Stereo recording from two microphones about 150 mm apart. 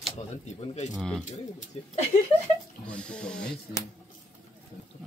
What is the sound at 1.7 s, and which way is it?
Speech, 40° left (ahead or behind).